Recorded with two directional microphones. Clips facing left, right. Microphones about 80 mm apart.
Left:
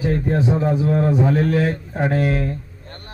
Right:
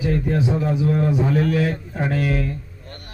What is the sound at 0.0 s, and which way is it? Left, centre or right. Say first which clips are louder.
A man's voice: left 1 dB; left.